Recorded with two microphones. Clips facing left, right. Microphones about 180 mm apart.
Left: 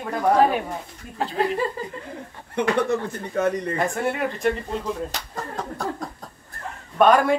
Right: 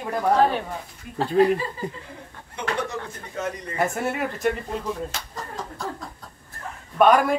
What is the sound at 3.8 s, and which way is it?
Speech, 5° right (ahead or behind).